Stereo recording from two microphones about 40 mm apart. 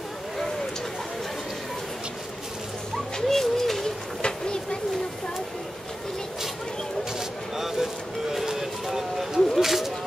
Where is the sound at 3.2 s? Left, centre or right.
Centre.